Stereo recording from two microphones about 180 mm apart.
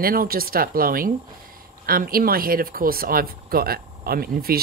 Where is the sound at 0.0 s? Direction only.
55° right (ahead or behind).